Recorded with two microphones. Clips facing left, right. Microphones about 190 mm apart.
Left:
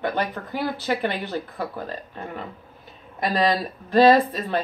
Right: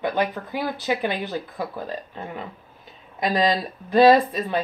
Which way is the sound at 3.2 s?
20° right (ahead or behind).